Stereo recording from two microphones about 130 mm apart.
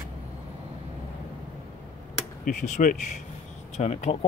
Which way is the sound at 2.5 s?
80° left.